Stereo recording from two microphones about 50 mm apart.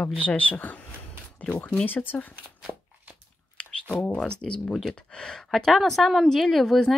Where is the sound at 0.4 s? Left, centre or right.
Left.